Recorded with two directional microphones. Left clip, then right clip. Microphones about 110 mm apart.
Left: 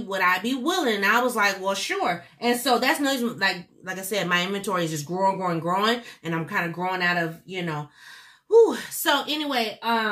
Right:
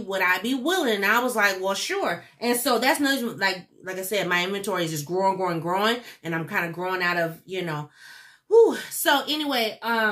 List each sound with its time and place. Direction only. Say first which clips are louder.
0.1 s a woman's voice: left 1 dB; 15° right (ahead or behind)